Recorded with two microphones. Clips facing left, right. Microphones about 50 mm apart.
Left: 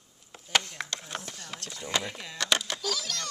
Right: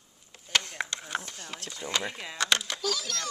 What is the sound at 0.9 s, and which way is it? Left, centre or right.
Speech, centre.